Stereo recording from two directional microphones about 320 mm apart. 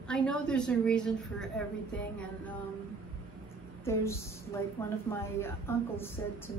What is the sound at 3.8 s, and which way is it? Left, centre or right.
A woman's voice, centre.